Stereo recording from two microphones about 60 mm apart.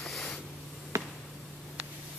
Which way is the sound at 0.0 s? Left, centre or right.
Centre.